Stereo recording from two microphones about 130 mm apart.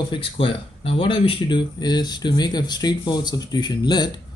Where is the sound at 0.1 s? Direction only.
40° left (ahead or behind).